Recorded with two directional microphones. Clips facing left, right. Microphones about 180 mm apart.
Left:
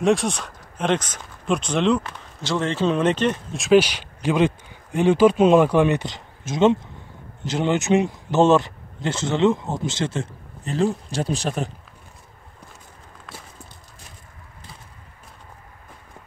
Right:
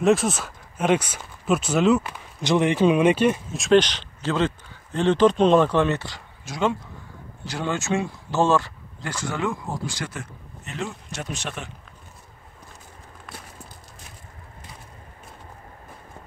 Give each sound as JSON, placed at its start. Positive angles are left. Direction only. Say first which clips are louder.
{"t": 0.0, "sound": "speech", "louder": "even", "side_deg": 0}